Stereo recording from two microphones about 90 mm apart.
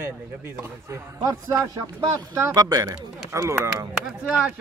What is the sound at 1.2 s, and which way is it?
Speech, 40° right (ahead or behind).